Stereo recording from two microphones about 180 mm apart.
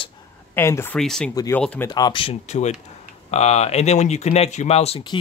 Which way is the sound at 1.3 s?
20° left (ahead or behind).